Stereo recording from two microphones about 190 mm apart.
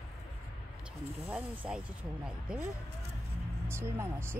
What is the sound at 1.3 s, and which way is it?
Music, 10° right (ahead or behind).